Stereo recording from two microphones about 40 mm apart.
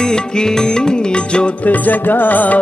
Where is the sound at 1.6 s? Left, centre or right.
Left.